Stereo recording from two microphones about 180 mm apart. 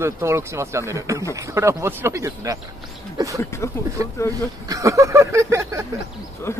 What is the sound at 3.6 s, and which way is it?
Speech, 15° left (ahead or behind).